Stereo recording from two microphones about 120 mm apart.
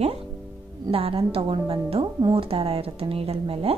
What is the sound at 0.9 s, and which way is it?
A woman's voice, 50° right (ahead or behind).